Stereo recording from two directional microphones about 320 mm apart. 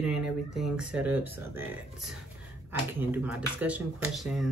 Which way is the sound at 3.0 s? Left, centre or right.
Centre.